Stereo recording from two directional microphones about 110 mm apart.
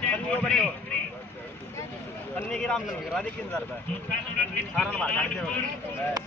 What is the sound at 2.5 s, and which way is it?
A man's voice, 10° left (ahead or behind).